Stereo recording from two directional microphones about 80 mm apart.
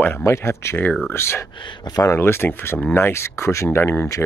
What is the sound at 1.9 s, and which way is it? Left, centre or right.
Speech, left.